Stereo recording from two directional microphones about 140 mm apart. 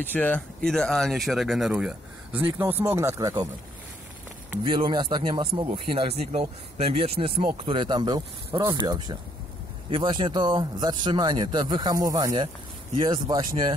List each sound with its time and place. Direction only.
0.0 s speech: 10° left (ahead or behind); by 3.4 s 25° right (ahead or behind)
4.6 s a man's voice: 35° right (ahead or behind)